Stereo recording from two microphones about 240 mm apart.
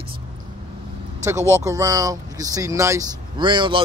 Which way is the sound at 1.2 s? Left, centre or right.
Centre.